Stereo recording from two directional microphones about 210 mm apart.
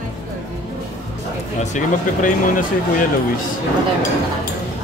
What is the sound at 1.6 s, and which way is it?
Speech, 40° left (ahead or behind).